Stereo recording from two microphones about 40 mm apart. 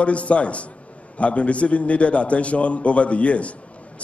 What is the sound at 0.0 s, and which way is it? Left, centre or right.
A man's voice, left.